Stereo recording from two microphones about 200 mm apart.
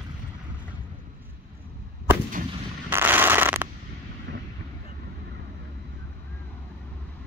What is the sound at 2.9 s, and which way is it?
Fireworks, 10° right (ahead or behind).